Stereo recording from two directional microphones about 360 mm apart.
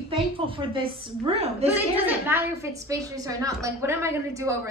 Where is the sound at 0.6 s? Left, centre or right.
Centre.